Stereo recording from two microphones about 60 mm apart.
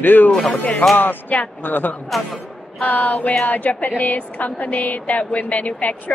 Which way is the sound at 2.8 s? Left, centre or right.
Left.